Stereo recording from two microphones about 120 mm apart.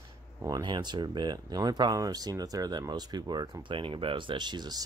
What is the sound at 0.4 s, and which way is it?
Speech, 35° right (ahead or behind).